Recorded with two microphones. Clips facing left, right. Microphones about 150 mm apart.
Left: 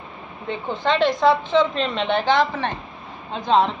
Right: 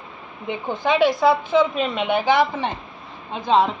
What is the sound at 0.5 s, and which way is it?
A woman's voice, 10° right (ahead or behind).